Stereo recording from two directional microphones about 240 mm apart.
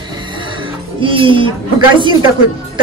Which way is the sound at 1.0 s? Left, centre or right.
Right.